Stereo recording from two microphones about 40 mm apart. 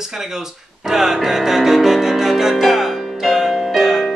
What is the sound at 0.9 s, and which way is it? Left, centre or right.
Music, centre.